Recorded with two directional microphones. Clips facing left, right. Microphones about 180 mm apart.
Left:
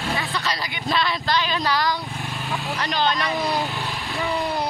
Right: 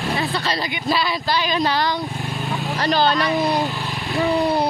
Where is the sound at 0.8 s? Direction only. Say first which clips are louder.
Right 1 dB; 5° right (ahead or behind); by 2.0 s 25° right (ahead or behind).